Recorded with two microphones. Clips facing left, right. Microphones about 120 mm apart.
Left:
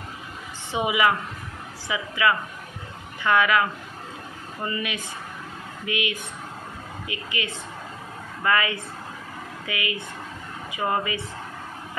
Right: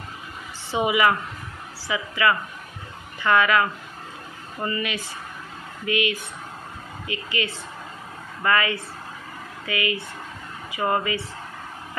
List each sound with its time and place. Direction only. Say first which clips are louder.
0.7 s a woman's voice: right 2 dB; 15° left (ahead or behind)
4.6 s a woman's voice: right 2 dB; 15° left (ahead or behind)